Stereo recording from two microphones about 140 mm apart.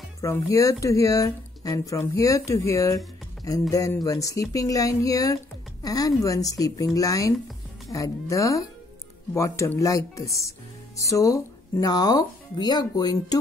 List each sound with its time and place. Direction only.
0.2 s speech: 25° left (ahead or behind)